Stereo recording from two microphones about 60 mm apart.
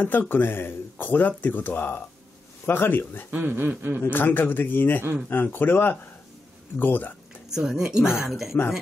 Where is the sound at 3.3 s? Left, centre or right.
Right.